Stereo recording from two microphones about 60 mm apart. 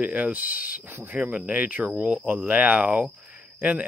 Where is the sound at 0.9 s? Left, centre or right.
Right.